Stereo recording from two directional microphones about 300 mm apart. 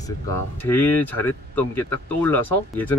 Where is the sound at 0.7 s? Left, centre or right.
Centre.